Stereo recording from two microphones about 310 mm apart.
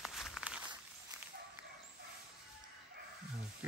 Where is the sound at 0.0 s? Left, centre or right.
Centre.